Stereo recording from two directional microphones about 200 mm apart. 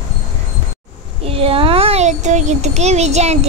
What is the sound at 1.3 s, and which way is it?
A child's voice, 30° right (ahead or behind).